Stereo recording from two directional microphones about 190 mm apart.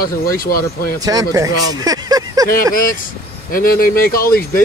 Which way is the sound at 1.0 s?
20° right (ahead or behind).